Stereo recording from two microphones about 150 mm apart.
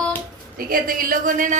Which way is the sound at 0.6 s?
70° right (ahead or behind).